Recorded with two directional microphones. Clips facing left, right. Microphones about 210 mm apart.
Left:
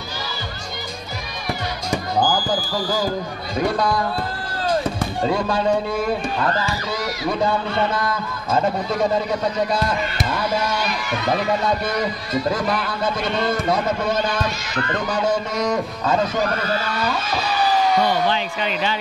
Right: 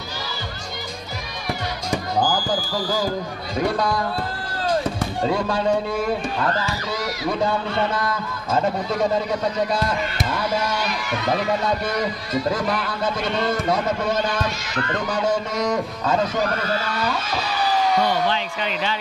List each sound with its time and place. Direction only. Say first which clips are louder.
2.4 s speech: left 1 dB; 35° left (ahead or behind)
3.8 s speech: left 2 dB; 10° left (ahead or behind)
4.8 s music: left 1 dB; 20° left (ahead or behind)
5.5 s speech: left 1 dB; 15° left (ahead or behind)